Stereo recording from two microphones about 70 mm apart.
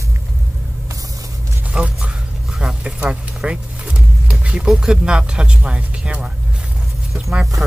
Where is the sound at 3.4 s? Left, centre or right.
Centre.